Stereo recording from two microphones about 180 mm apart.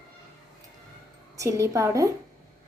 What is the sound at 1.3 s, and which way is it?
Speech, 15° right (ahead or behind).